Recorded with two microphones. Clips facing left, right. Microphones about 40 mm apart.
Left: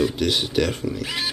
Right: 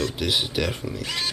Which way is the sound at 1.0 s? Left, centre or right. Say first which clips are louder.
Right 2 dB; centre.